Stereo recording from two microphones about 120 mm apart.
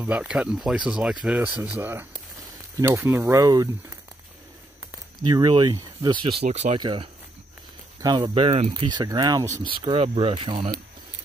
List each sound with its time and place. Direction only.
0.0 s speech: 10° right (ahead or behind); by 4.0 s 35° right (ahead or behind)
5.3 s speech: 35° right (ahead or behind)
6.4 s speech: 65° right (ahead or behind)
6.8 s speech: 40° right (ahead or behind)
8.5 s speech: 60° right (ahead or behind)
8.7 s speech: 35° right (ahead or behind)
9.7 s speech: 45° right (ahead or behind)